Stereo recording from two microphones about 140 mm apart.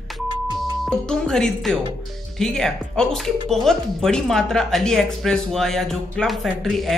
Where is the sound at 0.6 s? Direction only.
5° left (ahead or behind).